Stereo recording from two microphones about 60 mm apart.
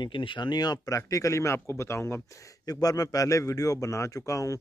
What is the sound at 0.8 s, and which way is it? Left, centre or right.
Speech, left.